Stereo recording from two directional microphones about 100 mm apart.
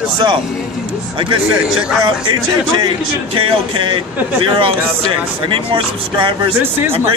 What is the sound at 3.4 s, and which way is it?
Speech, 55° right (ahead or behind).